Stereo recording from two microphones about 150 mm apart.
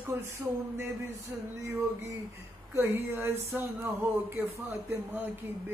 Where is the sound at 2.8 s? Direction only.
15° right (ahead or behind).